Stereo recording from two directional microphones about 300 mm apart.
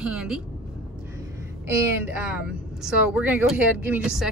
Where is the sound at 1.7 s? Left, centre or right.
Centre.